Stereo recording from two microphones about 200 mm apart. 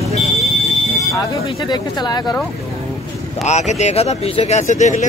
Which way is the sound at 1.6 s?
20° left (ahead or behind).